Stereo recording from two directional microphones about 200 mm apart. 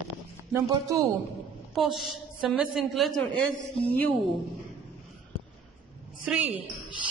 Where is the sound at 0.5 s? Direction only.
15° right (ahead or behind).